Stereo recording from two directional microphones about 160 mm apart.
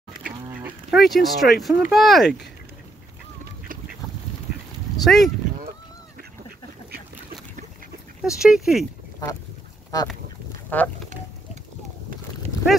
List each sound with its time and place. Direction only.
0.2 s livestock: 10° right (ahead or behind)
1.6 s speech: centre (ahead or behind)
5.0 s speech: centre (ahead or behind)
8.2 s speech: 5° right (ahead or behind)
9.9 s speech: 25° left (ahead or behind)
10.7 s speech: 10° left (ahead or behind)